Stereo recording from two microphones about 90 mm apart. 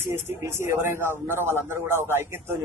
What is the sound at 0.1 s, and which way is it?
Speech, 25° right (ahead or behind).